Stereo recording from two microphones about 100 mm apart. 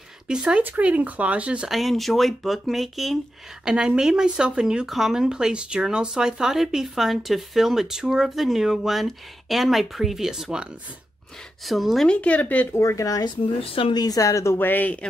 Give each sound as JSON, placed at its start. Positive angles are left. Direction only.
{"t": 0.3, "sound": "speech", "side_deg": -10}
{"t": 1.7, "sound": "speech", "side_deg": 0}
{"t": 12.2, "sound": "speech", "side_deg": 15}
{"t": 12.7, "sound": "speech", "side_deg": 30}
{"t": 13.6, "sound": "speech", "side_deg": 70}
{"t": 13.9, "sound": "speech", "side_deg": 40}